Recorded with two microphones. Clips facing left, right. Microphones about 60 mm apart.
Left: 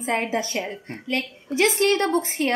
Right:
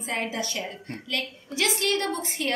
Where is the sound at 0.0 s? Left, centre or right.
Left.